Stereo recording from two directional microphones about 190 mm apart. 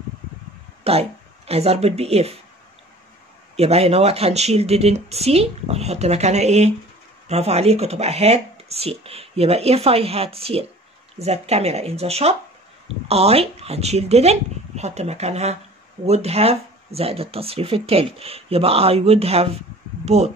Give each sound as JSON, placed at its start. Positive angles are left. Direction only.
{"t": 0.8, "sound": "speech", "side_deg": -30}
{"t": 3.5, "sound": "speech", "side_deg": -30}